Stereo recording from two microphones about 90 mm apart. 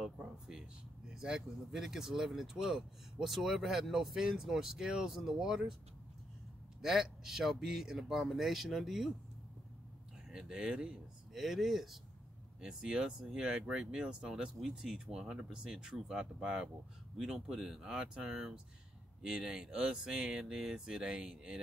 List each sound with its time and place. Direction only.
0.0 s speech: 5° right (ahead or behind)
6.8 s speech: 5° right (ahead or behind)
10.3 s speech: 10° right (ahead or behind)